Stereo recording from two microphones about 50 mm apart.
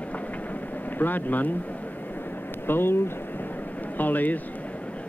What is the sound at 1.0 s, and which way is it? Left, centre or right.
Speech, left.